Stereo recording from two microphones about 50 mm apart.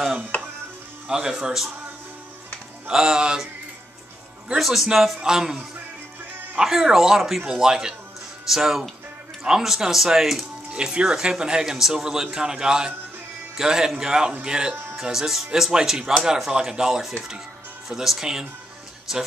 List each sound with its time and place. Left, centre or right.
1.0 s speech: centre
2.9 s speech: centre
4.6 s speech: centre
10.7 s speech: centre